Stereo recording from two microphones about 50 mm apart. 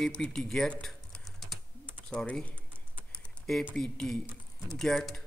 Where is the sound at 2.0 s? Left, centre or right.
Left.